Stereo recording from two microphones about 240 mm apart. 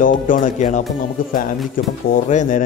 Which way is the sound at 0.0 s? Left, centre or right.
Left.